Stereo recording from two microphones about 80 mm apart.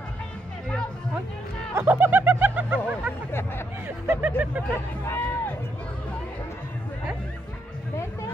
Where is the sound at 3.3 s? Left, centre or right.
Left.